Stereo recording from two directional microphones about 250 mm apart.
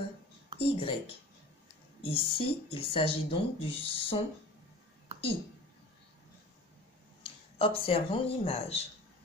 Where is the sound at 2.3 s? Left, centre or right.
Left.